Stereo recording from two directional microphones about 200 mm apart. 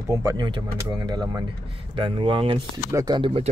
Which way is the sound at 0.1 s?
15° right (ahead or behind).